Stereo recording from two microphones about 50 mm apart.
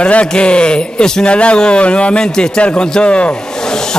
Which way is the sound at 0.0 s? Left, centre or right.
Left.